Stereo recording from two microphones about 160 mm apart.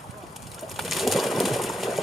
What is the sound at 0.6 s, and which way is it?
Bird, centre (ahead or behind).